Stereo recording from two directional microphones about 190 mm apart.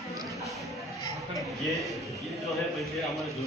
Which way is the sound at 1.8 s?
Centre (ahead or behind).